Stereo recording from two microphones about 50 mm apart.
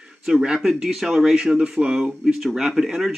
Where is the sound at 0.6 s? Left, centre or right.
Centre.